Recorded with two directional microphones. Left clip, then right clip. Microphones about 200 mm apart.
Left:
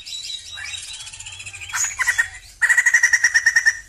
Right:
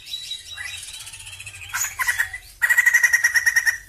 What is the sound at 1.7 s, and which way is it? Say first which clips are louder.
Bird: left 2 dB; 15° left (ahead or behind).